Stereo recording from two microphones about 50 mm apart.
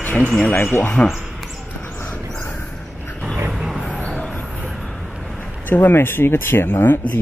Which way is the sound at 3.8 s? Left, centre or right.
Left.